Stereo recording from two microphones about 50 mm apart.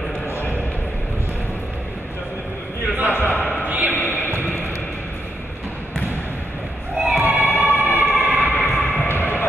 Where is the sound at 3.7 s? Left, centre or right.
Right.